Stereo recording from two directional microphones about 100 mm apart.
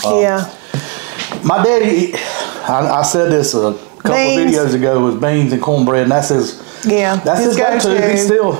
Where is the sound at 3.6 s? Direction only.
30° right (ahead or behind).